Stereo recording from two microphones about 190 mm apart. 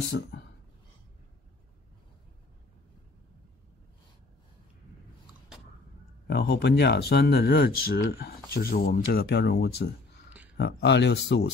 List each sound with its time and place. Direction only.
0.2 s speech: 65° left (ahead or behind)
6.2 s speech: 60° left (ahead or behind)